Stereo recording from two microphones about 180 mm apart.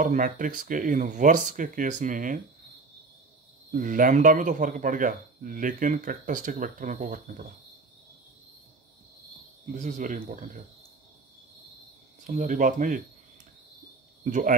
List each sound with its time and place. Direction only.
0.0 s speech: 45° right (ahead or behind)
3.7 s speech: 50° right (ahead or behind)
9.8 s speech: 45° right (ahead or behind)
12.3 s speech: 45° right (ahead or behind)
14.2 s speech: 45° right (ahead or behind)